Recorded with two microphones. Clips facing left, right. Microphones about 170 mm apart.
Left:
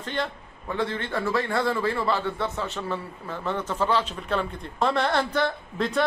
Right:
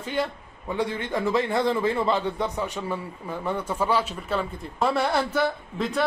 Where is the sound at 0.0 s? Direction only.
10° right (ahead or behind).